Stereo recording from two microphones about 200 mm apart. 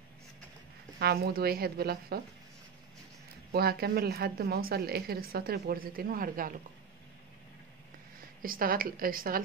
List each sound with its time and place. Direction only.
0.9 s a woman's voice: 50° right (ahead or behind)
3.5 s a woman's voice: 50° right (ahead or behind)
8.4 s a woman's voice: 45° right (ahead or behind)